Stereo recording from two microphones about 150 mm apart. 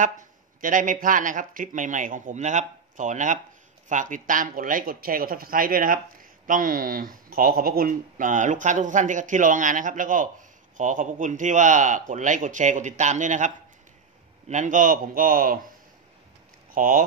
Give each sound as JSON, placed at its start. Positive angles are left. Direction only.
{"t": 0.0, "sound": "speech", "side_deg": -60}
{"t": 14.5, "sound": "speech", "side_deg": -55}
{"t": 16.7, "sound": "speech", "side_deg": -65}